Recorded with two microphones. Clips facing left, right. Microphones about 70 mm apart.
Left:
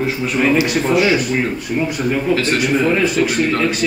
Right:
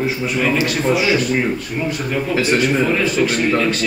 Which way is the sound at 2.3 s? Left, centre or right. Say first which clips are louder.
Right 3 dB; centre.